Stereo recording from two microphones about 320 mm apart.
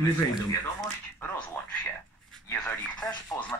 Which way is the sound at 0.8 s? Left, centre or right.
Centre.